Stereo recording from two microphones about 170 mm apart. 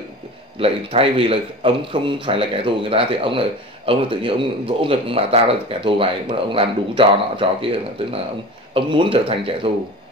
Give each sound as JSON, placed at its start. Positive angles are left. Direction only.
{"t": 0.6, "sound": "speech", "side_deg": -35}